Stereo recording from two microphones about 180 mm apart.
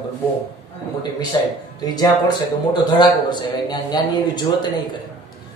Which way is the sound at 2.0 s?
25° left (ahead or behind).